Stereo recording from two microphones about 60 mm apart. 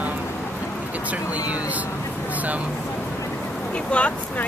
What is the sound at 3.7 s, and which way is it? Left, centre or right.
Speech, centre.